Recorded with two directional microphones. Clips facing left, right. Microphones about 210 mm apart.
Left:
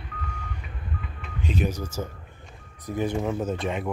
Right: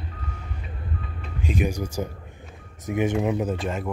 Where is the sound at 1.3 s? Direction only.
10° right (ahead or behind).